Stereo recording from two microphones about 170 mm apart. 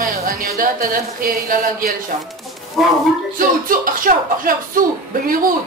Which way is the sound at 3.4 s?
55° right (ahead or behind).